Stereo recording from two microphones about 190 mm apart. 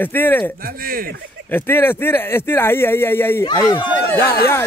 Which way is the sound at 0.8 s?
50° right (ahead or behind).